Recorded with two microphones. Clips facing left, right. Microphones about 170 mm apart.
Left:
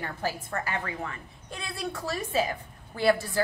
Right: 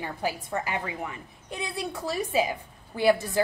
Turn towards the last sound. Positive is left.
turn(degrees=-15)  # may be behind; listen again after turning